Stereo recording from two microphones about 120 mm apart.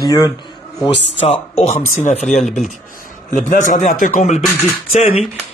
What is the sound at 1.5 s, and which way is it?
Speech, 70° left (ahead or behind).